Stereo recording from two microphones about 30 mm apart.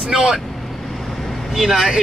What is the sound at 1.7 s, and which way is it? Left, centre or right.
Speech, centre.